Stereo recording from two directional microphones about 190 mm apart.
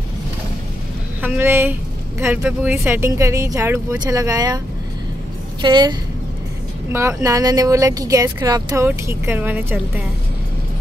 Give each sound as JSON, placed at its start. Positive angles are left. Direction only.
{"t": 1.2, "sound": "speech", "side_deg": -10}
{"t": 5.6, "sound": "a woman's voice", "side_deg": -25}
{"t": 6.9, "sound": "speech", "side_deg": -15}